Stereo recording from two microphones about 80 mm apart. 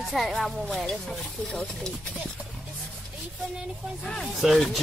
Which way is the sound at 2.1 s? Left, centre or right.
Centre.